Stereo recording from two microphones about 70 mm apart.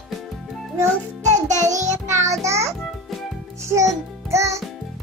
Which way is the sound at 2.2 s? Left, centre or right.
Right.